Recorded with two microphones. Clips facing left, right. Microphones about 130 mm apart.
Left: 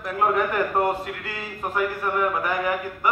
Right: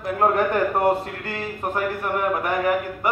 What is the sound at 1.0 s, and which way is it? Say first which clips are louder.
Speech: right 3 dB; 35° right (ahead or behind).